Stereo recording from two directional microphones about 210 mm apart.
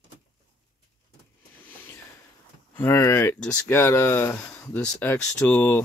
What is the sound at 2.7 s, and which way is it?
Speech, 10° left (ahead or behind).